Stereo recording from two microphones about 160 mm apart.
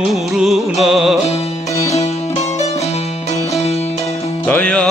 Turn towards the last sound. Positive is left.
turn(degrees=10)  # may be behind; listen again after turning